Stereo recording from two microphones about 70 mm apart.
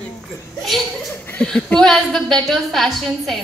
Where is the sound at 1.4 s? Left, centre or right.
Centre.